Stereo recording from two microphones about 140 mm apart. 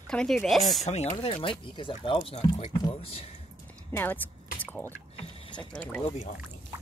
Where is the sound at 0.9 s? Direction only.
45° left (ahead or behind).